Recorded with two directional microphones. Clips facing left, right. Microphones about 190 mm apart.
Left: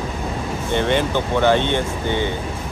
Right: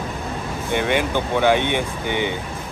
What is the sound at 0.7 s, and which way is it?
Speech, 10° right (ahead or behind).